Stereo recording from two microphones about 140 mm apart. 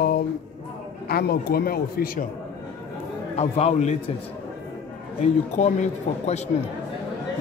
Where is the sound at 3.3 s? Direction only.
50° left (ahead or behind).